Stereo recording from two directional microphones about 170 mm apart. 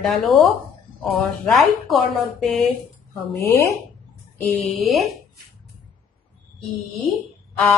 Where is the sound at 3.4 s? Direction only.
15° left (ahead or behind).